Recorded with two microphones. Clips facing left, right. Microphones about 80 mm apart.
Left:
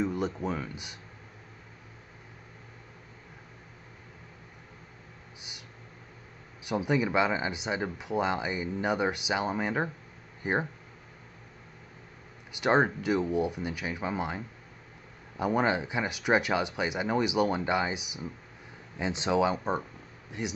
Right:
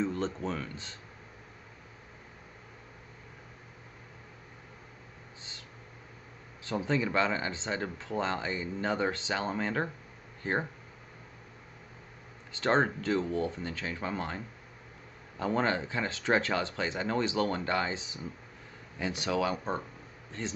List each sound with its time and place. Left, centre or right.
0.0 s speech: centre
6.6 s speech: centre
12.5 s speech: centre